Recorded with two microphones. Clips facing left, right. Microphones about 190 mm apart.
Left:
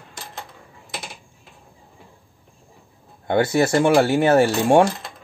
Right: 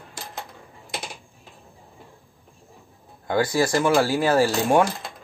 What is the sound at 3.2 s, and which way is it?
Speech, 25° left (ahead or behind).